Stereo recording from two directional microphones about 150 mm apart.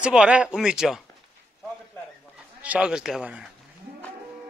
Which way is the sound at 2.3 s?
5° right (ahead or behind).